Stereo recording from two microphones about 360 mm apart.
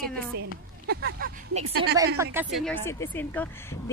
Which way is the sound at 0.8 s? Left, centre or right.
Right.